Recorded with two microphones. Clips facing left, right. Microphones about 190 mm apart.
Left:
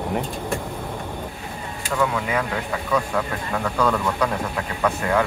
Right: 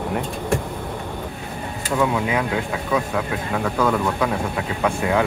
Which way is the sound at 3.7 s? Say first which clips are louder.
Right 1 dB; 5° right (ahead or behind).